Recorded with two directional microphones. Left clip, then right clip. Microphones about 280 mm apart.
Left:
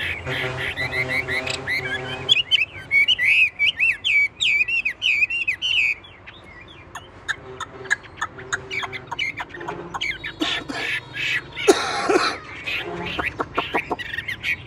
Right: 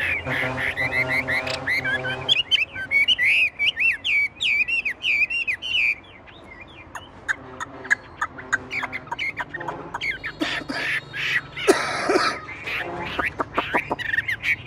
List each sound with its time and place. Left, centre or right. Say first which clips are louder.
0.0 s bird: right 2 dB; centre
0.9 s music: even; centre
2.2 s chirp: left 3 dB; centre
4.7 s bird: left 2 dB; centre
5.7 s bird: left 4 dB; left
6.9 s turkey: right 1 dB; centre
13.9 s bird: right 4 dB; centre